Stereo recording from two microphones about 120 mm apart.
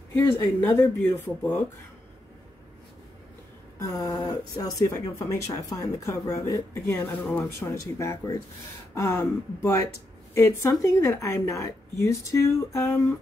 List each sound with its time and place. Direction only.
0.6 s speech: 20° left (ahead or behind)
3.8 s a woman's voice: 30° left (ahead or behind)